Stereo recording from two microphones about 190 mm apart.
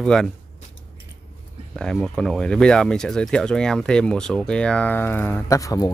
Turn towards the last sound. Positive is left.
turn(degrees=15)  # may be behind; listen again after turning